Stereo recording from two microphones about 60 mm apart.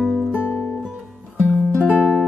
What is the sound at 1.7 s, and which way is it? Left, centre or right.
Music, left.